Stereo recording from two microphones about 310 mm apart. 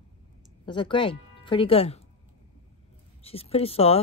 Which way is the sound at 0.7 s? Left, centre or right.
Centre.